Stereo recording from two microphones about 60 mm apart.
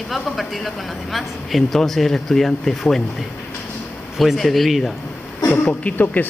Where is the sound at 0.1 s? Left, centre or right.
Centre.